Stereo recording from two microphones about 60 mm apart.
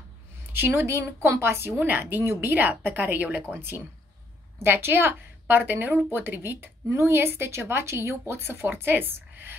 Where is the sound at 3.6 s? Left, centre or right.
Right.